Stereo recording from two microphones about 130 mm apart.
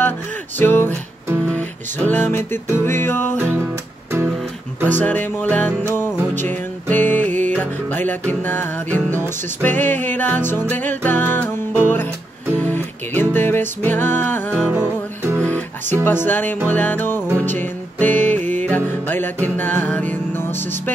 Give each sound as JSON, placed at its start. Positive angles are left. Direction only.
{"t": 0.6, "sound": "music", "side_deg": 15}
{"t": 4.8, "sound": "music", "side_deg": 15}
{"t": 14.6, "sound": "music", "side_deg": -15}
{"t": 15.4, "sound": "music", "side_deg": 10}